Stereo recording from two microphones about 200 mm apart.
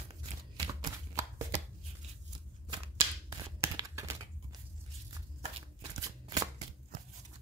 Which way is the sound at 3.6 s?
15° right (ahead or behind).